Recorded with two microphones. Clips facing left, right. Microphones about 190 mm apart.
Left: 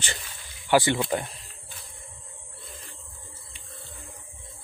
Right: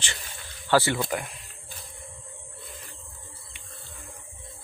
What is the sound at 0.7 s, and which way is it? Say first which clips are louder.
Speech: left 1 dB; 15° left (ahead or behind).